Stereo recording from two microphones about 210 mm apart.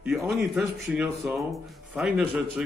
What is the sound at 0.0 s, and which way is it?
A man's voice, 5° right (ahead or behind).